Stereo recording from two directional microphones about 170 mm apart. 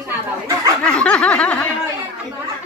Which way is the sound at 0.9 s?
5° left (ahead or behind).